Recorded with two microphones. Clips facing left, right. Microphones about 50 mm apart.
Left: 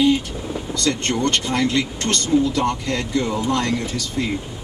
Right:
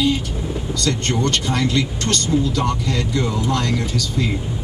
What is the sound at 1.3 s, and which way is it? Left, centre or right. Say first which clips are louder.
Speech: even; left.